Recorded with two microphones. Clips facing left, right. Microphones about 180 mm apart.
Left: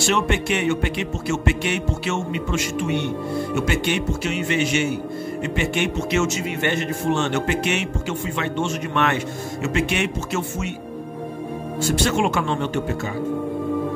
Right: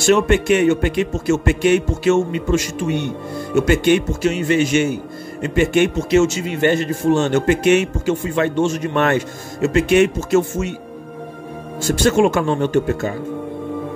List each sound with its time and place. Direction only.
0.0 s a man's voice: 45° right (ahead or behind)
11.8 s a man's voice: 45° right (ahead or behind)